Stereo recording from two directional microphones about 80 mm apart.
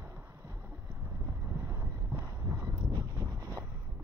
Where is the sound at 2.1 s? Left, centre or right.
Right.